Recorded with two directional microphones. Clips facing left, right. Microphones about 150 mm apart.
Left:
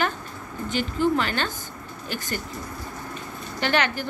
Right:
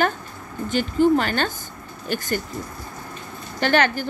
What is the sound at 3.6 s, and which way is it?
Speech, 45° right (ahead or behind).